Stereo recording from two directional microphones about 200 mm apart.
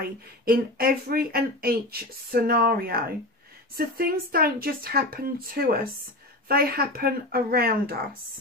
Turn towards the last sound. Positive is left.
turn(degrees=-50)  # may be behind; listen again after turning